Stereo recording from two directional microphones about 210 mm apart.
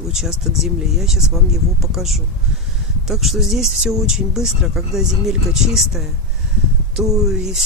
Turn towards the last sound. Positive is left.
turn(degrees=0)  # may be behind; listen again after turning